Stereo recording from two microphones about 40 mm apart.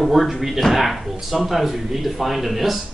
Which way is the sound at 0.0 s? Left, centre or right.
Centre.